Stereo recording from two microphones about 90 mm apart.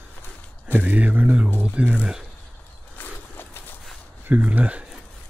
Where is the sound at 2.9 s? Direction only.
20° left (ahead or behind).